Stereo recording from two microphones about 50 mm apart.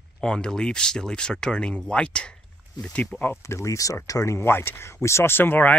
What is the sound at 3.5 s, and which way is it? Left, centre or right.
Speech, left.